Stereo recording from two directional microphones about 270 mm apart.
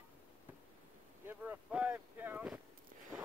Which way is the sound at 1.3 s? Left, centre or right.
Centre.